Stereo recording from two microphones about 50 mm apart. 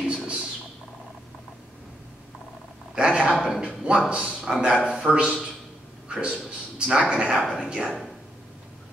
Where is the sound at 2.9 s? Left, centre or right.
Centre.